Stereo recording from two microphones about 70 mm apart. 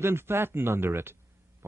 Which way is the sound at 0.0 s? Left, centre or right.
Right.